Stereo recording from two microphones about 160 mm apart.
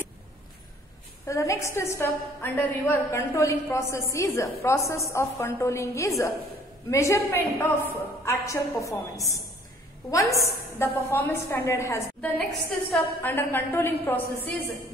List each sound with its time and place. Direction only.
1.2 s a woman's voice: 20° left (ahead or behind)